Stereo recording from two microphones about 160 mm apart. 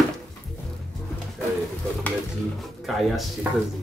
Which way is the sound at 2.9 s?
Centre (ahead or behind).